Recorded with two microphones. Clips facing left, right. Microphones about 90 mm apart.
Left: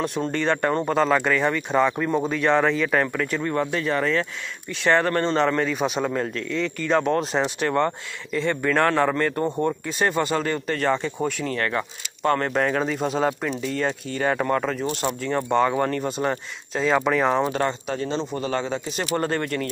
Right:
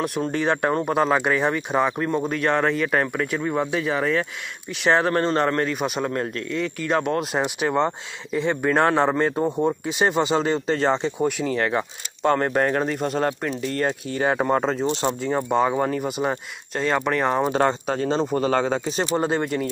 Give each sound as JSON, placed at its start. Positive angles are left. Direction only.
{"t": 0.0, "sound": "speech", "side_deg": -5}
{"t": 2.0, "sound": "a man's voice", "side_deg": 0}
{"t": 14.3, "sound": "a man's voice", "side_deg": -25}
{"t": 17.5, "sound": "speech", "side_deg": -40}
{"t": 19.1, "sound": "speech", "side_deg": -15}